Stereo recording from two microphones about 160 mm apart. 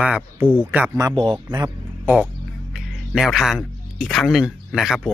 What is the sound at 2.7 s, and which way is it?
Speech, centre (ahead or behind).